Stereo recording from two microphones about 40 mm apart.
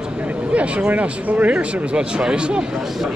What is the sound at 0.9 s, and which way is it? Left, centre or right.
Speech, right.